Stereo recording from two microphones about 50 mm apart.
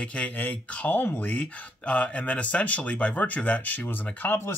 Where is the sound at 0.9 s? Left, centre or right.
Left.